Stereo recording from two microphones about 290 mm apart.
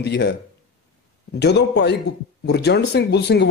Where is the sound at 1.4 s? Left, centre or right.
Left.